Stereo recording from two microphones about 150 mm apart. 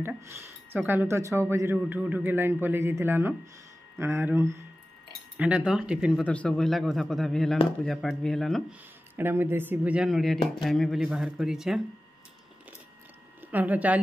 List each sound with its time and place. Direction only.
0.0 s speech: 20° right (ahead or behind)
6.2 s speech: 10° left (ahead or behind)
9.1 s speech: 15° right (ahead or behind)
13.4 s speech: 10° right (ahead or behind)